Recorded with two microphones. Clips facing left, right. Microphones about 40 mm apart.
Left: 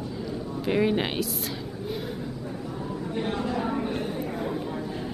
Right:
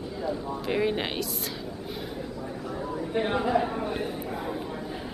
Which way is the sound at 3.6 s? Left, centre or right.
Centre.